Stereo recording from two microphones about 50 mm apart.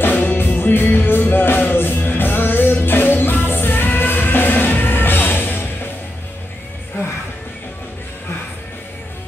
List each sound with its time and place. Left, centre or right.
0.0 s music: left